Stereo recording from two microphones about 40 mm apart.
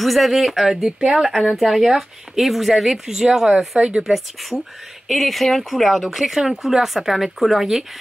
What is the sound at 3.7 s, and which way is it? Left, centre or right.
Speech, right.